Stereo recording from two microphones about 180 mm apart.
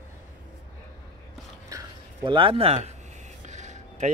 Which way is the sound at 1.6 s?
20° right (ahead or behind).